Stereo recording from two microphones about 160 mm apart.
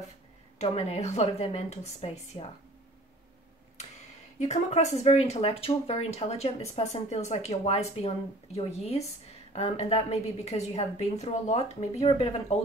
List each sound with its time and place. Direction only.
0.6 s speech: 40° left (ahead or behind)
4.4 s speech: 45° left (ahead or behind)